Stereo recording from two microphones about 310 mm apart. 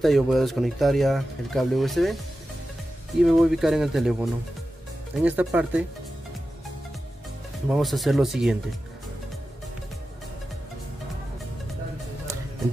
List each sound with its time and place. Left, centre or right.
0.0 s speech: centre
3.2 s speech: centre
7.7 s speech: centre